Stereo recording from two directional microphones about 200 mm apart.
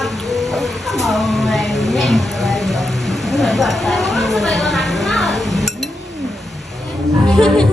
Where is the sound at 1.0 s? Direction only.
Centre (ahead or behind).